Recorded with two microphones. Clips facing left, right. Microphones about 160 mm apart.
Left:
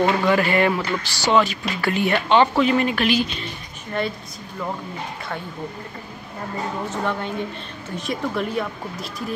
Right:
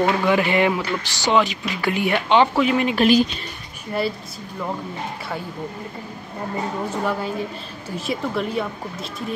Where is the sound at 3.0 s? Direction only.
40° right (ahead or behind).